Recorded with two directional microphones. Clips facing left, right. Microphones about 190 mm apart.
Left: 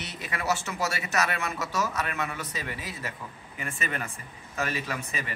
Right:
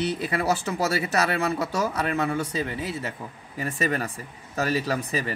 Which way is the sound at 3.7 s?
40° right (ahead or behind).